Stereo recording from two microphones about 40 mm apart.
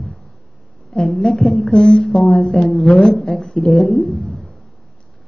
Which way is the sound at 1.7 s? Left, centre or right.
Centre.